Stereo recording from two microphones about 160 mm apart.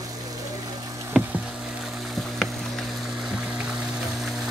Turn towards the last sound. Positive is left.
turn(degrees=0)  # may be behind; listen again after turning